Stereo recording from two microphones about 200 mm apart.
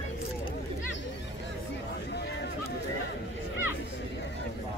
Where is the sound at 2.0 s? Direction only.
55° left (ahead or behind).